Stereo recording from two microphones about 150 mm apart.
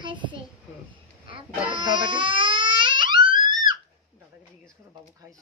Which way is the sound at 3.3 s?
30° right (ahead or behind).